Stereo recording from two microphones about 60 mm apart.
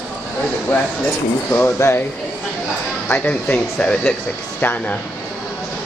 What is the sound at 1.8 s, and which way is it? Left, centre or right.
Speech, left.